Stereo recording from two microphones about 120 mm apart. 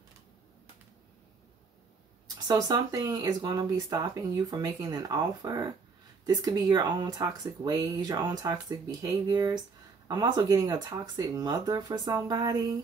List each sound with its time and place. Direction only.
2.3 s speech: 35° right (ahead or behind)